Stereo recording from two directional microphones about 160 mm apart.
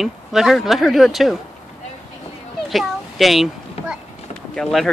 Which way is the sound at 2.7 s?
Centre (ahead or behind).